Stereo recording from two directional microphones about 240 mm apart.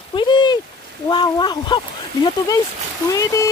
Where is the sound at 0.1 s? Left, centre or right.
Centre.